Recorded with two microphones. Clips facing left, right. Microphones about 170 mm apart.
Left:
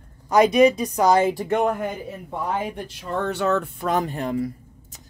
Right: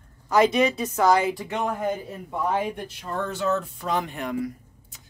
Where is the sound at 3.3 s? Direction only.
65° left (ahead or behind).